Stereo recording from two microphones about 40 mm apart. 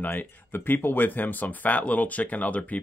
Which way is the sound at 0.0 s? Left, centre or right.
Left.